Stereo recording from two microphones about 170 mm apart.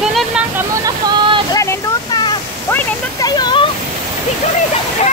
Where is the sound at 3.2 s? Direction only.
25° left (ahead or behind).